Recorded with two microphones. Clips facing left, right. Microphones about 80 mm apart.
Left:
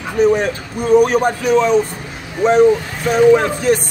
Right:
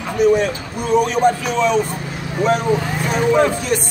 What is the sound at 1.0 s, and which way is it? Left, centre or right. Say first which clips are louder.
Speech: left 1 dB; left.